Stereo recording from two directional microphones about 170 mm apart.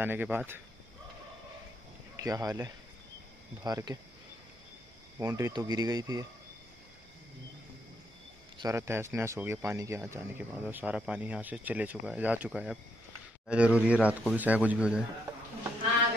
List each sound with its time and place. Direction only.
0.0 s speech: 10° right (ahead or behind)
2.1 s speech: 20° right (ahead or behind)
5.2 s speech: 20° right (ahead or behind)
8.5 s speech: 15° right (ahead or behind)